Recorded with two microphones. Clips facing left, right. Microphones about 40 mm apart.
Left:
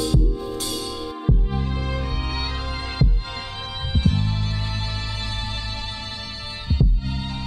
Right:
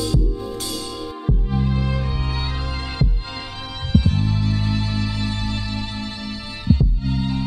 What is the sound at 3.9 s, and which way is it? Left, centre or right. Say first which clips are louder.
Music: right 4 dB; centre.